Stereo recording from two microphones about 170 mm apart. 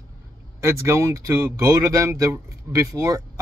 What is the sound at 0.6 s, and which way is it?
Speech, 15° right (ahead or behind).